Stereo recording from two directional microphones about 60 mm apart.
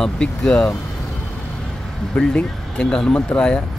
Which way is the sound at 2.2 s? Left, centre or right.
Centre.